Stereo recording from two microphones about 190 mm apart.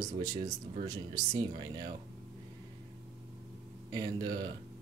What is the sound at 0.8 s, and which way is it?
Speech, 20° right (ahead or behind).